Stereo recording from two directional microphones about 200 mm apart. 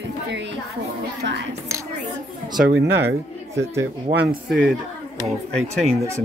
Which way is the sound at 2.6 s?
55° right (ahead or behind).